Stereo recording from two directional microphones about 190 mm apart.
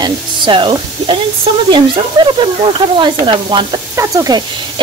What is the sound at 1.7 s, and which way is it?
Sizzle, 25° right (ahead or behind).